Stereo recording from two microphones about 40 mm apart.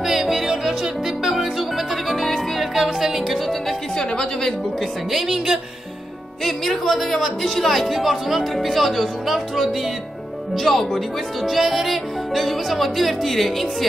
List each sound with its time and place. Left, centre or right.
0.0 s music: centre
3.9 s a woman's voice: centre
5.1 s speech: centre
6.4 s speech: centre
11.4 s speech: centre